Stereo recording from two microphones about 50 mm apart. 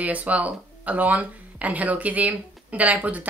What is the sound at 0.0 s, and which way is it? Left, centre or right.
A woman's voice, right.